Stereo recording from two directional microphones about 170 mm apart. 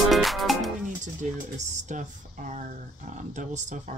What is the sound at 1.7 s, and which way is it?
Speech, 45° right (ahead or behind).